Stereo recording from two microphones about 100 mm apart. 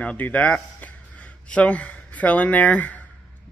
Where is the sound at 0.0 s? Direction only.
15° left (ahead or behind).